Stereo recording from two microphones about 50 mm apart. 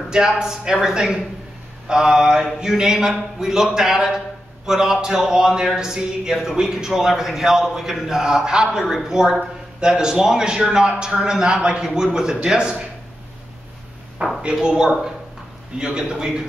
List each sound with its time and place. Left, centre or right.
0.1 s a man's voice: centre
14.5 s a man's voice: centre